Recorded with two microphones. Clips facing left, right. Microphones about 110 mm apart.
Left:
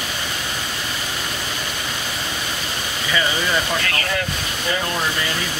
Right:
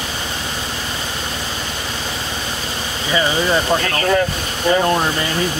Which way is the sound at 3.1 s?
30° right (ahead or behind).